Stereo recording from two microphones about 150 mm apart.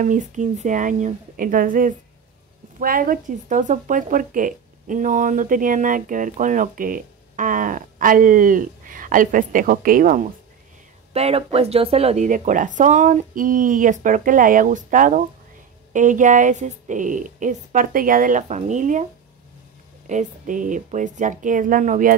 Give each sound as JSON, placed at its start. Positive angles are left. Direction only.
{"t": 0.0, "sound": "speech", "side_deg": -55}
{"t": 11.1, "sound": "speech", "side_deg": -40}
{"t": 20.1, "sound": "speech", "side_deg": -55}